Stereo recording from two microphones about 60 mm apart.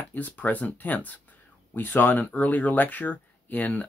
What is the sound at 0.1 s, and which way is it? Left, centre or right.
Speech, left.